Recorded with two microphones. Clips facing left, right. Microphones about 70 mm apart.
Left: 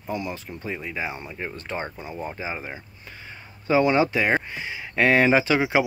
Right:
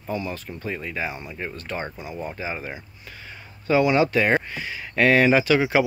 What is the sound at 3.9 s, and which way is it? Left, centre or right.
Speech, left.